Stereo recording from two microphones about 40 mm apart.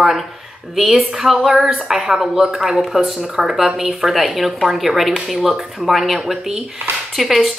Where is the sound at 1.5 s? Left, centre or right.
Right.